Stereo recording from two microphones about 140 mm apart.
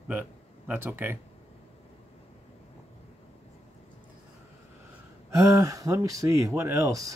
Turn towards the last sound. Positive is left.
turn(degrees=-25)  # may be behind; listen again after turning